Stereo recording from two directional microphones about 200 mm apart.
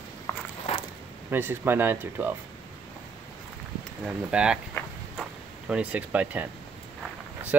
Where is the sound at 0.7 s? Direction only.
35° left (ahead or behind).